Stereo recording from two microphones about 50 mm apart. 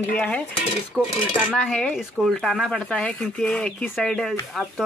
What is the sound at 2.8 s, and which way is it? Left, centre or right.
Speech, left.